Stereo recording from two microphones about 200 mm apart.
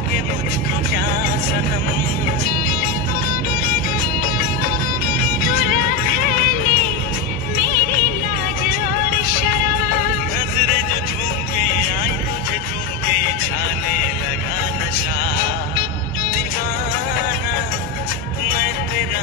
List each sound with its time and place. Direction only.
5.4 s music: 45° left (ahead or behind)